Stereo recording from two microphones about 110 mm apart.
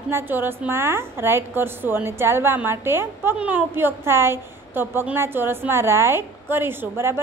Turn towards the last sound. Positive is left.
turn(degrees=-20)  # may be behind; listen again after turning